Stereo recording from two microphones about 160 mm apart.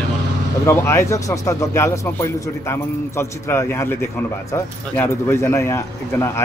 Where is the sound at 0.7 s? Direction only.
20° left (ahead or behind).